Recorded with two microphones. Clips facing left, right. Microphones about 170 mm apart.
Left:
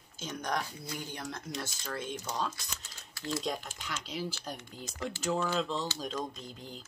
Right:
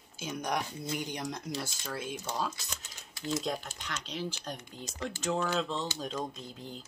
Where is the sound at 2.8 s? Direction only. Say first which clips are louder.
Right 2 dB; 20° right (ahead or behind).